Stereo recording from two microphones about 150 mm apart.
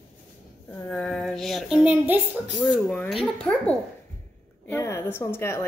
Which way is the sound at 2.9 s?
5° left (ahead or behind).